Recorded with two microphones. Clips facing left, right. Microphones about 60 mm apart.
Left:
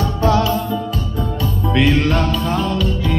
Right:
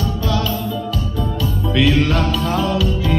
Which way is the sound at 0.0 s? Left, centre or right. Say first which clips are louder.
Left 5 dB; left.